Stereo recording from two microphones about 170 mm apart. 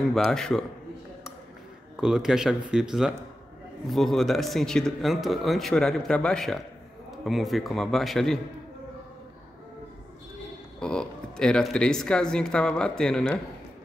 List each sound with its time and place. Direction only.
0.1 s speech: centre (ahead or behind)
2.0 s speech: 5° right (ahead or behind)
10.8 s speech: 5° left (ahead or behind)